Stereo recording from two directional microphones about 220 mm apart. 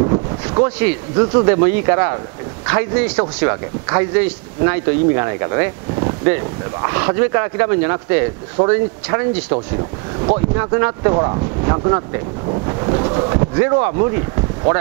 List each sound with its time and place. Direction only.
0.0 s wind noise: 25° right (ahead or behind)
0.7 s speech: 15° right (ahead or behind)
10.5 s speech: 15° right (ahead or behind)
12.4 s wind noise: 25° right (ahead or behind)